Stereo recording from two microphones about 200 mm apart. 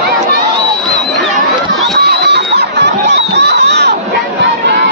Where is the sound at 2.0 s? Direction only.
55° right (ahead or behind).